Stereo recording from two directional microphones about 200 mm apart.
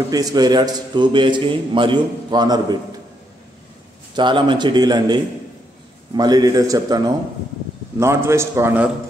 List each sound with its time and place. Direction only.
0.1 s a man's voice: 20° right (ahead or behind)
4.1 s a man's voice: 25° right (ahead or behind)